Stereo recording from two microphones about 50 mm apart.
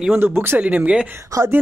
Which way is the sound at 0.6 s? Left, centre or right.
Right.